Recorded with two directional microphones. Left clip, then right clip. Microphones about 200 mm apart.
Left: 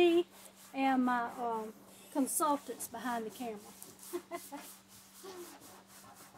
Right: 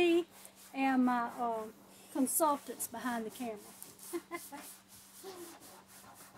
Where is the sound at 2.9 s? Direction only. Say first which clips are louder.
Left 1 dB; 15° right (ahead or behind).